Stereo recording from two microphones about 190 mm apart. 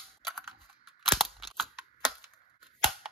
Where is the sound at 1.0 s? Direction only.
Centre (ahead or behind).